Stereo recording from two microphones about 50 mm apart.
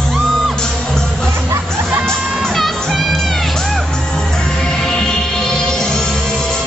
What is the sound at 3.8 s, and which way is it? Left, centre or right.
Music, left.